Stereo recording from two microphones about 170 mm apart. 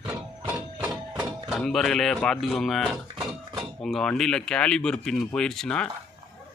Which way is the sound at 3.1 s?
25° right (ahead or behind).